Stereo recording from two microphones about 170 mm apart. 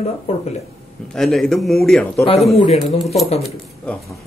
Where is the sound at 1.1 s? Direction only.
Centre (ahead or behind).